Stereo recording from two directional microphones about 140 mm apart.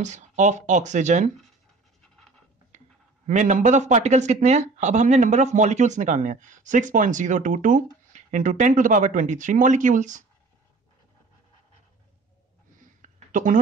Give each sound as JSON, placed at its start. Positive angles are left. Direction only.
{"t": 0.0, "sound": "speech", "side_deg": -60}
{"t": 3.3, "sound": "speech", "side_deg": -65}
{"t": 13.0, "sound": "a sound", "side_deg": -65}